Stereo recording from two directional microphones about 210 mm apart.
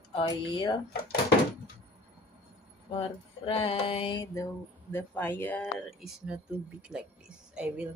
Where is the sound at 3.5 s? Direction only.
25° left (ahead or behind); by 6.3 s centre (ahead or behind).